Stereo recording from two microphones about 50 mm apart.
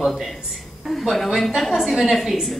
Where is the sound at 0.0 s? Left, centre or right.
Centre.